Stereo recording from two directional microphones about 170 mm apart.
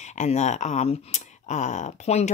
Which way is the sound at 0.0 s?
45° left (ahead or behind).